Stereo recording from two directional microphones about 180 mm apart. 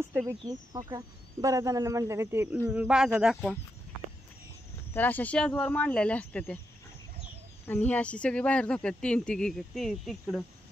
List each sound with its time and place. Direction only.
0.1 s speech: 15° right (ahead or behind)
4.9 s speech: 10° left (ahead or behind)
7.6 s speech: 10° left (ahead or behind)